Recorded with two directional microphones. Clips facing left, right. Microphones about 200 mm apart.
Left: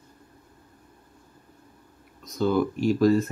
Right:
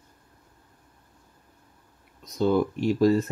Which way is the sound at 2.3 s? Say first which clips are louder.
Right 1 dB; 25° right (ahead or behind).